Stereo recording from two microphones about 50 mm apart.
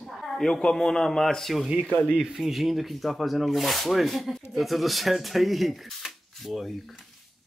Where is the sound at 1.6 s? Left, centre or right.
Right.